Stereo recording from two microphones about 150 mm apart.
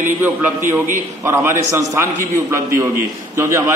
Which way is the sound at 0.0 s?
15° right (ahead or behind).